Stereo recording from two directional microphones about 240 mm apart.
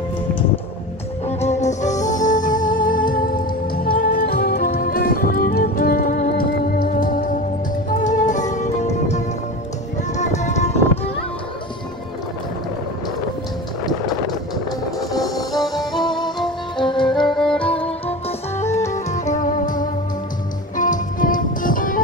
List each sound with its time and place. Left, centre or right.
1.2 s music: left
16.0 s music: centre
17.3 s music: centre
18.7 s music: centre
19.0 s music: left